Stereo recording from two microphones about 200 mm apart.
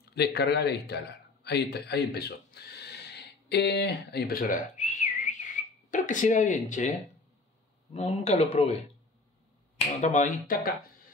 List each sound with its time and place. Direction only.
0.0 s a man's voice: 55° left (ahead or behind)
7.9 s speech: 35° left (ahead or behind)
10.0 s speech: 40° left (ahead or behind)